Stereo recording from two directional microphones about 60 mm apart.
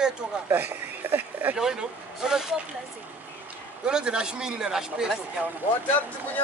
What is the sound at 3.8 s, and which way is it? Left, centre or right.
Speech, centre.